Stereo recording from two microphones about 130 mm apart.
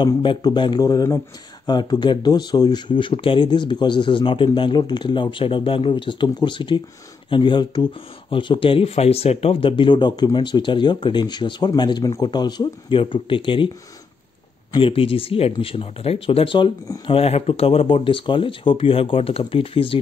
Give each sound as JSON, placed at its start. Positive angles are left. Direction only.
{"t": 0.0, "sound": "speech", "side_deg": 35}
{"t": 14.8, "sound": "speech", "side_deg": 45}